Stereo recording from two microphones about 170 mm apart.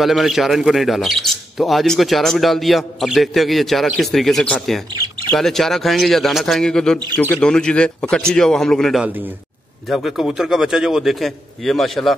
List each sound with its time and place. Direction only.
0.0 s speech: centre (ahead or behind)
9.0 s a man's voice: 10° right (ahead or behind)